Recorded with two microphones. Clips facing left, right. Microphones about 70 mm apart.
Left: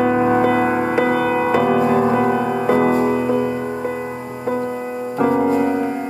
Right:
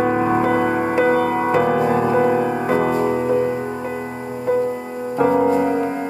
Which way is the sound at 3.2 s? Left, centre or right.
Right.